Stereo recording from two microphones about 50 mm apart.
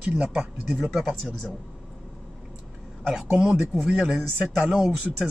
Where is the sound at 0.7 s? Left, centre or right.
Centre.